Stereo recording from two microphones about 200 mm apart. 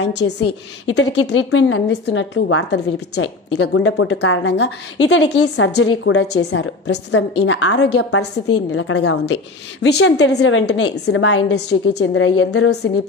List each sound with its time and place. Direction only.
0.0 s a woman's voice: 60° left (ahead or behind)
6.0 s a woman's voice: 60° left (ahead or behind); by 8.3 s 90° left
8.7 s a woman's voice: 75° left (ahead or behind)
12.4 s a woman's voice: 90° left